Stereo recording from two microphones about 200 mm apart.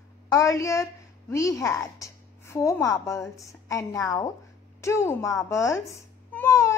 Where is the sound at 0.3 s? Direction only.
15° left (ahead or behind).